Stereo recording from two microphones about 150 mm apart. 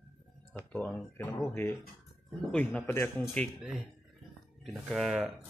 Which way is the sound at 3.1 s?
5° left (ahead or behind).